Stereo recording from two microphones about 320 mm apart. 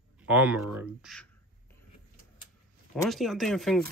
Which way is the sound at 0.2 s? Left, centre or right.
Centre.